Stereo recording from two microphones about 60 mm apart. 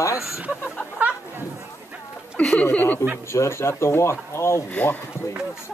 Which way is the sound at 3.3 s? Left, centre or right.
Left.